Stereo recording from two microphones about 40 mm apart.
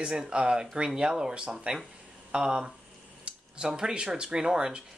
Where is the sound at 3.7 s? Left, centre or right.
Centre.